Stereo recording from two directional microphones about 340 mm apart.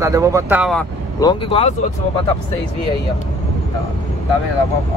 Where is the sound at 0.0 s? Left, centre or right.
Centre.